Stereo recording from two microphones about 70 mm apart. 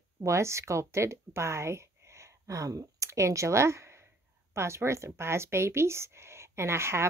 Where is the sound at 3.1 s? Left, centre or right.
Right.